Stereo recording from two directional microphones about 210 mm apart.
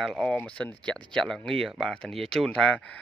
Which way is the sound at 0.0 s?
Centre (ahead or behind).